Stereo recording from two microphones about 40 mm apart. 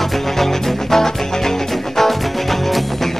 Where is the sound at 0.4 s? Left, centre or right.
Centre.